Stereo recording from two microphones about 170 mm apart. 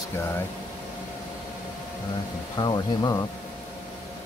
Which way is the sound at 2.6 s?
25° left (ahead or behind).